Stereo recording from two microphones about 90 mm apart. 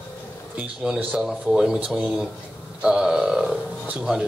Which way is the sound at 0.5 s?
10° right (ahead or behind).